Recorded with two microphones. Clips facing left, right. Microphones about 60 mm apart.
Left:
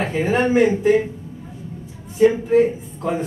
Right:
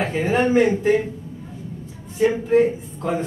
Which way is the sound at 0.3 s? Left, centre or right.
Left.